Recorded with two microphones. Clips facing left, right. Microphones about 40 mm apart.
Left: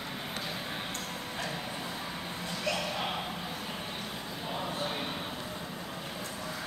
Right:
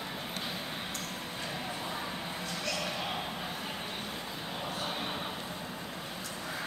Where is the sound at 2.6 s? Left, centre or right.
Centre.